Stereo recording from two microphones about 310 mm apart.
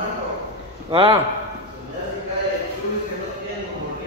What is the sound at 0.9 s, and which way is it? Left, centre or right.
Speech, centre.